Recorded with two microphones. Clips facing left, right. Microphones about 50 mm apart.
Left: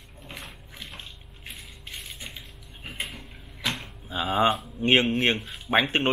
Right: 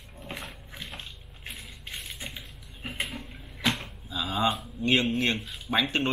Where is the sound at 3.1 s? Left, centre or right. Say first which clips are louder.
Right 3 dB; centre.